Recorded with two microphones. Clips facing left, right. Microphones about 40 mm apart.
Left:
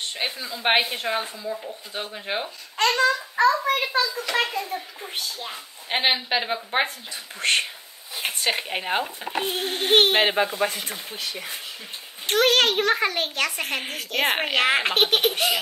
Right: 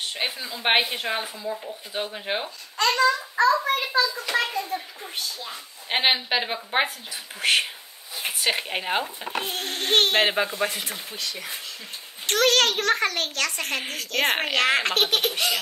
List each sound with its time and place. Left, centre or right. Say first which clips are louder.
0.1 s speech: even; centre
2.8 s a child's voice: even; left
3.8 s a child's voice: even; left
5.9 s speech: even; centre
9.4 s a woman's voice: left 5 dB; centre
10.2 s speech: left 1 dB; centre
11.1 s a child's voice: left 1 dB; centre